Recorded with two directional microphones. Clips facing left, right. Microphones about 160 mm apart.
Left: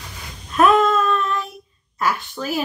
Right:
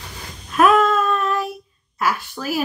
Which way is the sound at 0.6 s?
5° right (ahead or behind).